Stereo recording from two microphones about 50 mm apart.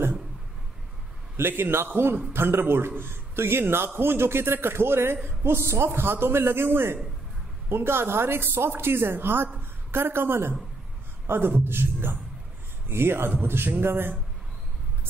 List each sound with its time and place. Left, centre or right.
1.3 s a man's voice: right